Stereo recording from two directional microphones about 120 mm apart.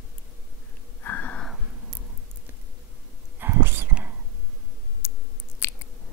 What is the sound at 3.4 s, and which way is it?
Whispering, 20° right (ahead or behind).